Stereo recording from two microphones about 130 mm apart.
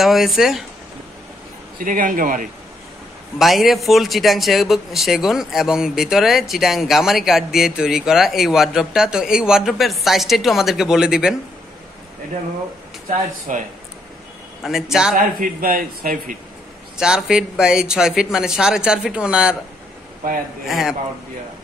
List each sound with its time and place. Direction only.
0.0 s speech: centre (ahead or behind)
1.8 s a man's voice: 90° right
3.3 s speech: centre (ahead or behind)
13.5 s speech: 80° right
14.6 s speech: centre (ahead or behind)
15.1 s a man's voice: 90° right
16.9 s speech: 5° right (ahead or behind)
20.6 s speech: centre (ahead or behind)